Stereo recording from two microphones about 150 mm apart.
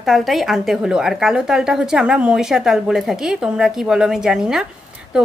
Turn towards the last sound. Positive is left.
turn(degrees=-5)  # may be behind; listen again after turning